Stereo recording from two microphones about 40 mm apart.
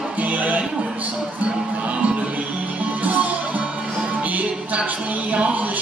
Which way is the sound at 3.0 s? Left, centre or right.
Right.